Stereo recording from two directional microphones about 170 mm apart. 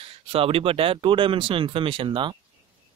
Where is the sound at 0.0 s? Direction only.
35° right (ahead or behind).